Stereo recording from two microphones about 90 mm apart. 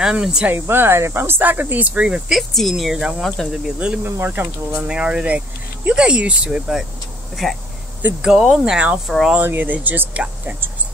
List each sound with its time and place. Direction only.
0.0 s speech: 10° right (ahead or behind)
0.5 s speech: 25° right (ahead or behind)
2.5 s speech: centre (ahead or behind)
4.0 s speech: 25° right (ahead or behind)
4.8 s speech: 10° right (ahead or behind)
8.0 s speech: 20° right (ahead or behind)
8.4 s speech: centre (ahead or behind)
8.7 s speech: 15° right (ahead or behind)
9.0 s speech: 5° right (ahead or behind)
9.4 s speech: 20° right (ahead or behind)